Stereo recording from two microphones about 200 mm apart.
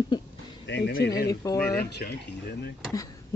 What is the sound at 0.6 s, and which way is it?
Speech, 60° left (ahead or behind).